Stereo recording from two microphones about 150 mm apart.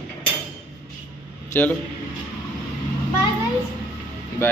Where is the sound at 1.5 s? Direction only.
15° left (ahead or behind).